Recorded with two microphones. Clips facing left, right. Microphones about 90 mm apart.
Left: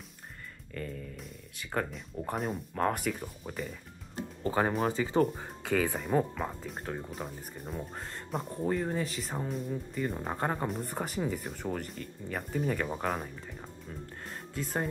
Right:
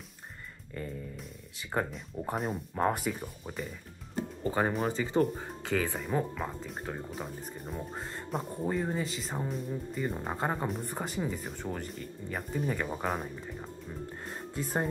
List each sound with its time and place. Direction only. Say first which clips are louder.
0.7 s music: even; 15° right (ahead or behind)
1.6 s speech: right 1 dB; 15° right (ahead or behind)
1.9 s speech: right 1 dB; 5° right (ahead or behind)
14.6 s speech: right 1 dB; 5° right (ahead or behind)